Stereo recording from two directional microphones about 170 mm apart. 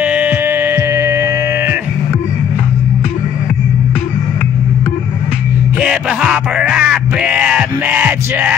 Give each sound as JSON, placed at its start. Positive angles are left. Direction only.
{"t": 0.0, "sound": "music", "side_deg": -10}
{"t": 5.8, "sound": "music", "side_deg": -5}